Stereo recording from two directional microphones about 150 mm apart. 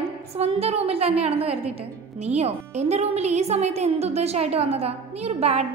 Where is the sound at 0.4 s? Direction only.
45° right (ahead or behind).